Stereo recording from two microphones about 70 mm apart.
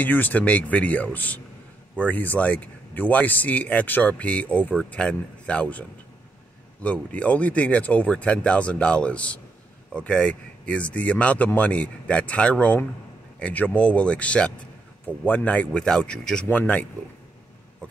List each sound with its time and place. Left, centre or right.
0.0 s speech: left